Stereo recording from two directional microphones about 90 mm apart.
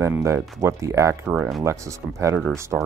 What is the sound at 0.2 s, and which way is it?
Speech, 30° right (ahead or behind).